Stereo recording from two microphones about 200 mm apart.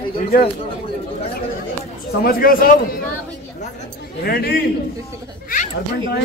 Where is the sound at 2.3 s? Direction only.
45° left (ahead or behind).